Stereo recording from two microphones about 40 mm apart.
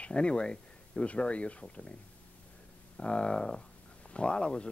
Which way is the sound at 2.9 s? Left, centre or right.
Left.